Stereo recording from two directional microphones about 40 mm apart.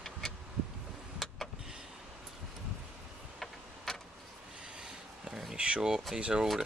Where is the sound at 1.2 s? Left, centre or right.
Centre.